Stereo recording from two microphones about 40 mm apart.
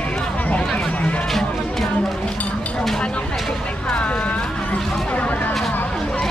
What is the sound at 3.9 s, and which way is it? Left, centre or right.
Music, left.